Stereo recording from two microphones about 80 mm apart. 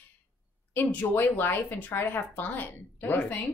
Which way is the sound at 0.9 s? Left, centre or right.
Left.